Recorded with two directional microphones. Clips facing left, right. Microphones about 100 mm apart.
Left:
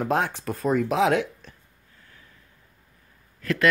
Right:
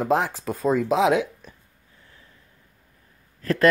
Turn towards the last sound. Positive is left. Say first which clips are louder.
# right 4 dB
turn(degrees=-35)  # may be behind; listen again after turning